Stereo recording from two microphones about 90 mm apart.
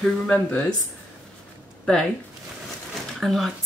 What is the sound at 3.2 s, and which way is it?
Speech, centre (ahead or behind).